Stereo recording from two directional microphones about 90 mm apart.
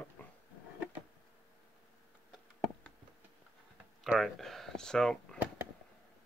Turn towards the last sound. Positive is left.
turn(degrees=5)  # may be behind; listen again after turning